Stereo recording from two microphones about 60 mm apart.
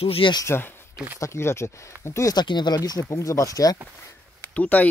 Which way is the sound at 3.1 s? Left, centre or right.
Left.